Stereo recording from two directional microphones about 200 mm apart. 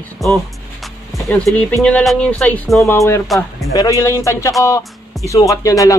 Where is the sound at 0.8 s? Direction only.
Centre (ahead or behind).